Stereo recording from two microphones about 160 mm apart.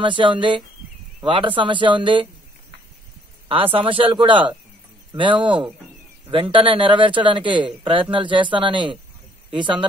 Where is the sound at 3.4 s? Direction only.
35° right (ahead or behind).